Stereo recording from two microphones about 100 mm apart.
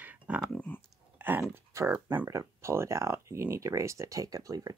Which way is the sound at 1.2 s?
20° right (ahead or behind).